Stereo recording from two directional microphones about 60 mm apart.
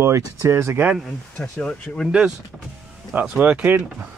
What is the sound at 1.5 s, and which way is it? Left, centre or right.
Speech, centre.